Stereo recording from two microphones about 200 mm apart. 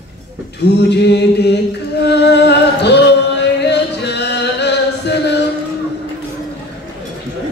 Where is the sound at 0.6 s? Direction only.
55° left (ahead or behind).